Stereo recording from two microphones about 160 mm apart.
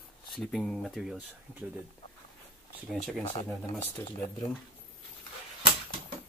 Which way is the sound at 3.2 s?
35° left (ahead or behind).